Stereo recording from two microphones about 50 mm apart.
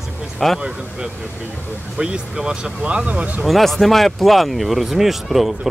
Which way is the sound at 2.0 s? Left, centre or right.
Centre.